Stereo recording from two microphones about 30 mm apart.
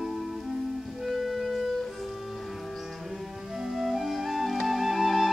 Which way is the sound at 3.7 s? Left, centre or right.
Centre.